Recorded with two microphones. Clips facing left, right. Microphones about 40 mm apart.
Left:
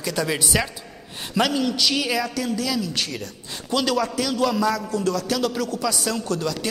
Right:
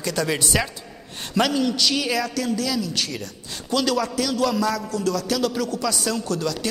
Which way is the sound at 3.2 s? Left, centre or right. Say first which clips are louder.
Even; left.